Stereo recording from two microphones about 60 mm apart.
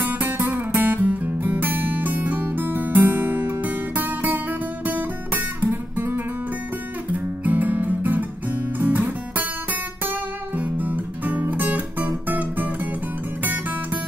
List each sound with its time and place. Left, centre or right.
0.0 s music: right
7.1 s guitar: right
13.4 s music: right